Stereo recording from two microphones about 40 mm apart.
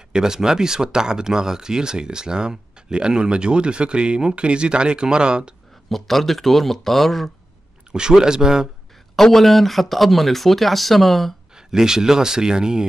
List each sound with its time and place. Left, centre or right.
0.1 s speech: centre
5.9 s speech: centre
7.9 s speech: centre
9.1 s speech: centre
11.5 s speech: centre